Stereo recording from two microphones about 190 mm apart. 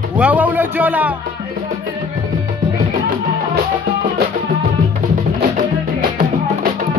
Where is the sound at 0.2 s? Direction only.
10° right (ahead or behind).